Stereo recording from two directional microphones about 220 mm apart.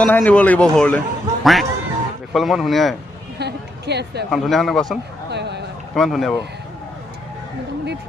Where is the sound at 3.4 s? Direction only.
50° right (ahead or behind).